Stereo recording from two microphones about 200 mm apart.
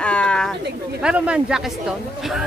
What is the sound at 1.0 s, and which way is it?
Speech, 5° right (ahead or behind).